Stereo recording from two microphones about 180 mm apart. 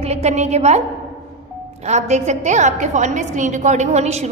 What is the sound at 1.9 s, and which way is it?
A woman's voice, 40° right (ahead or behind).